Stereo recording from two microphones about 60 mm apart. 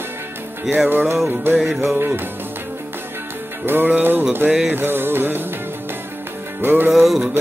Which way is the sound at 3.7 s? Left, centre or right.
Right.